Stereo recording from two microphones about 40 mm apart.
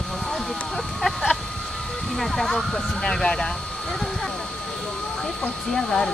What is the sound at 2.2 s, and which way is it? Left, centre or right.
Speech, centre.